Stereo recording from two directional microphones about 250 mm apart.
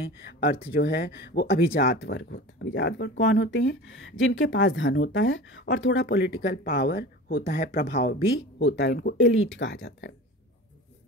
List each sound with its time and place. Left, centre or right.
0.2 s speech: left